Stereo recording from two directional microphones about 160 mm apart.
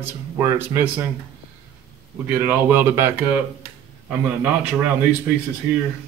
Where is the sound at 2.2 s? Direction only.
10° right (ahead or behind).